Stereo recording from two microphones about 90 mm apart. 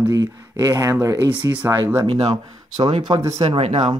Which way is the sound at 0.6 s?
35° right (ahead or behind).